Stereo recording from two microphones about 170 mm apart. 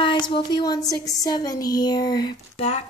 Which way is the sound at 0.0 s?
30° left (ahead or behind).